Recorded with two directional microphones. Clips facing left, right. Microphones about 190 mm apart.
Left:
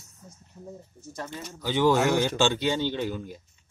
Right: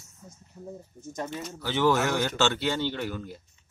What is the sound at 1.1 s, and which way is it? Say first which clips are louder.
Speech: right 3 dB; 20° right (ahead or behind).